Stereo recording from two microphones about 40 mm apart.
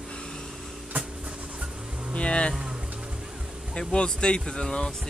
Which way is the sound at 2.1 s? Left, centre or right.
Left.